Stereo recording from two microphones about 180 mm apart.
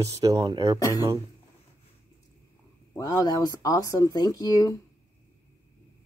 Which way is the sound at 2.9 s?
20° left (ahead or behind).